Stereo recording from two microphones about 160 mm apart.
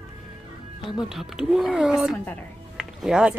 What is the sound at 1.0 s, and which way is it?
Speech, 5° right (ahead or behind).